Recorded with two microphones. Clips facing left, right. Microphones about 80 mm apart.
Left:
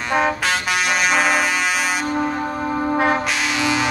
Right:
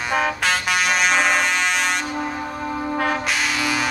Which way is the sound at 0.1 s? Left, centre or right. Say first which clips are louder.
Left 2 dB; centre.